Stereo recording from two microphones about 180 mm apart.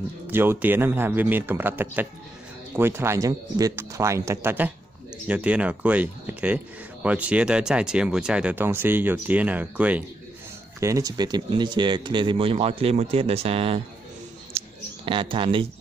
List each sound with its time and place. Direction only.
0.3 s speech: 10° right (ahead or behind)
10.8 s speech: 20° right (ahead or behind)
15.0 s speech: 30° right (ahead or behind)